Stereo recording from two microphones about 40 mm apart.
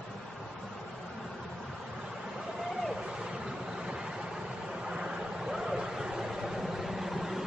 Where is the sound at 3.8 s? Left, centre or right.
Centre.